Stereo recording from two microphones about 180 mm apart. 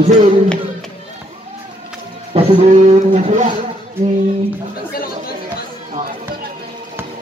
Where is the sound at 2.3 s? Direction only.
40° right (ahead or behind).